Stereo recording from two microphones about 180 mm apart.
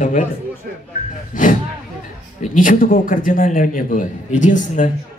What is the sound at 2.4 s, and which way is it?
A man's voice, 45° left (ahead or behind).